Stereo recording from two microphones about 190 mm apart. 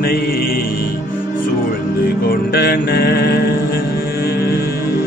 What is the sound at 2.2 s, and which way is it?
Music, 55° left (ahead or behind).